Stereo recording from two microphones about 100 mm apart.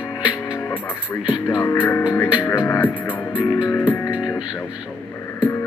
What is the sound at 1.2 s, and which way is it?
Music, 10° right (ahead or behind).